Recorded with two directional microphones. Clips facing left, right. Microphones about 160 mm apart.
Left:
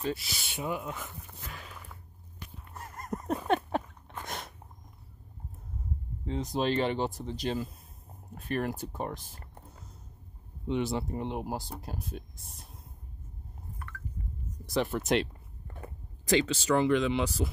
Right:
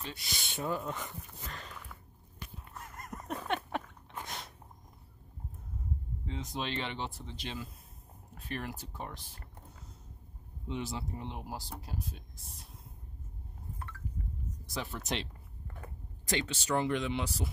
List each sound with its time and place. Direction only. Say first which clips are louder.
0.1 s speech: left 7 dB; 5° left (ahead or behind)
3.0 s a sound: left 7 dB; 35° left (ahead or behind)
6.2 s speech: left 9 dB; 40° left (ahead or behind)
10.7 s speech: left 8 dB; 65° left (ahead or behind)
14.7 s speech: left 10 dB; 60° left (ahead or behind)
16.3 s speech: left 7 dB; 90° left